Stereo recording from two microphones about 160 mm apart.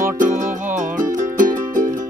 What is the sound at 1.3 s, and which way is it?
Music, 55° right (ahead or behind).